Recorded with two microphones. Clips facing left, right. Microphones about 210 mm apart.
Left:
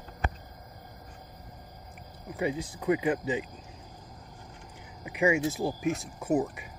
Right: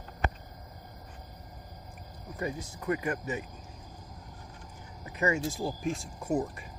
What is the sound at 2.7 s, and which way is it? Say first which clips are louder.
Speech: left 5 dB; 15° left (ahead or behind).